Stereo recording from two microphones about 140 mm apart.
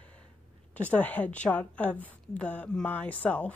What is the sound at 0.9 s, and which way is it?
A woman's voice, 10° left (ahead or behind).